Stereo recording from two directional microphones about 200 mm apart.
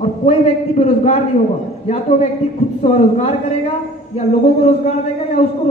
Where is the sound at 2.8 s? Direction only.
35° left (ahead or behind).